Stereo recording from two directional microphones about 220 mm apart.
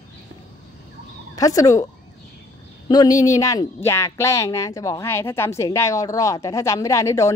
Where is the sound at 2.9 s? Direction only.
15° left (ahead or behind).